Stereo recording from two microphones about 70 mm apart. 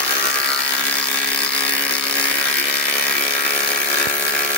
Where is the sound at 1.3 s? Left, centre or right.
Centre.